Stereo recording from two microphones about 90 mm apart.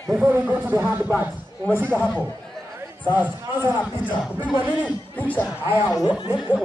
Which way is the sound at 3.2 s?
15° right (ahead or behind).